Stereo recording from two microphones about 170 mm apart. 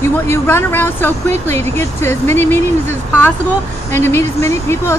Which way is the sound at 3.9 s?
15° left (ahead or behind).